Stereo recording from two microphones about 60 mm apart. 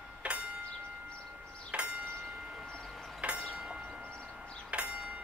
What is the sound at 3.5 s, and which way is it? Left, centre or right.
Train, centre.